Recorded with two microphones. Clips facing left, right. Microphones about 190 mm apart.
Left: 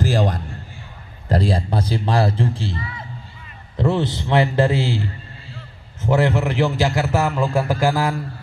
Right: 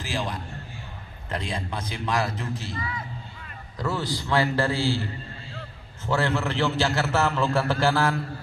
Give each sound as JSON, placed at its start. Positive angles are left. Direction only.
{"t": 0.0, "sound": "a sound", "side_deg": 45}
{"t": 1.3, "sound": "a man's voice", "side_deg": 35}
{"t": 6.0, "sound": "a man's voice", "side_deg": 20}